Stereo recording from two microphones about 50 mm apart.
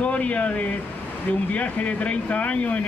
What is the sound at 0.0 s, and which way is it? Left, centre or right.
A man's voice, left.